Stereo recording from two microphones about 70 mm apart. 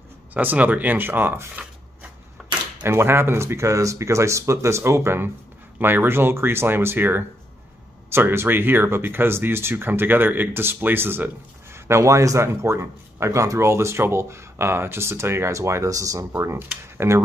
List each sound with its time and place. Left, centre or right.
0.3 s speech: right
2.9 s a man's voice: right
11.9 s a man's voice: right
16.3 s a man's voice: right